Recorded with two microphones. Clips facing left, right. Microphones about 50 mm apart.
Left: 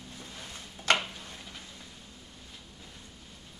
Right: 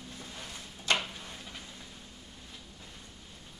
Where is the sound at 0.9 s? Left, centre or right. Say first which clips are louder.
Left 3 dB; left.